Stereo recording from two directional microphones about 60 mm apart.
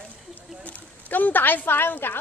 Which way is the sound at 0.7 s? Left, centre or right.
Left.